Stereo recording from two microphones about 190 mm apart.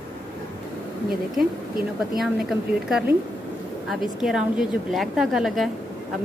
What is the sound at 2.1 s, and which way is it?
A woman's voice, centre (ahead or behind).